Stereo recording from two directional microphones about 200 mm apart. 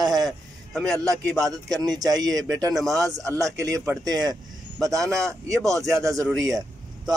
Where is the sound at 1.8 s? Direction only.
20° right (ahead or behind).